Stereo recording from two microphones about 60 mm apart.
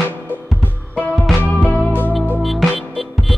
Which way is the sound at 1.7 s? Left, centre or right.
Left.